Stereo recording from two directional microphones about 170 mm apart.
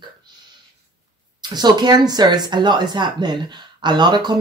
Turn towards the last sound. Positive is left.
turn(degrees=-25)  # may be behind; listen again after turning